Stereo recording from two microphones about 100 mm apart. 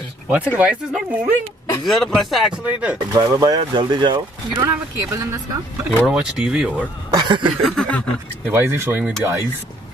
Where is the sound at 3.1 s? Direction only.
40° right (ahead or behind).